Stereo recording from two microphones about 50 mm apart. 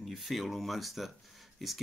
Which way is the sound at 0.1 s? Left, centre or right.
Centre.